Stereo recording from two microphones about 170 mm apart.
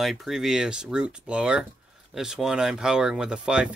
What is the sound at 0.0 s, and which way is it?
Speech, centre (ahead or behind).